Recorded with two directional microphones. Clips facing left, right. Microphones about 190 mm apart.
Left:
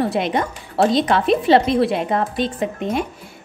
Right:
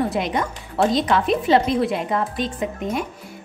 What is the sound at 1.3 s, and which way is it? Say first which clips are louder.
Speech: left 4 dB; 70° left (ahead or behind).